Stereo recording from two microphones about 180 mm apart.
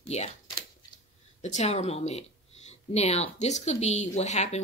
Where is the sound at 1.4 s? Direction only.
40° left (ahead or behind).